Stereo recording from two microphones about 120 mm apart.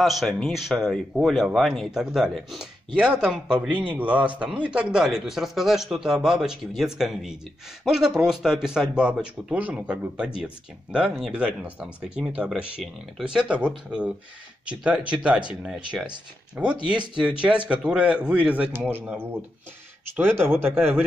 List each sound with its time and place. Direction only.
0.0 s a man's voice: centre (ahead or behind)
17.2 s a man's voice: 10° right (ahead or behind)